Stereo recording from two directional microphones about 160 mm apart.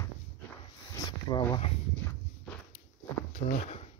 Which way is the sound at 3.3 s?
45° left (ahead or behind).